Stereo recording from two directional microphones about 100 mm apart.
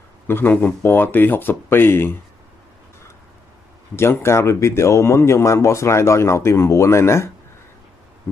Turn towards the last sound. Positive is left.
turn(degrees=25)  # may be behind; listen again after turning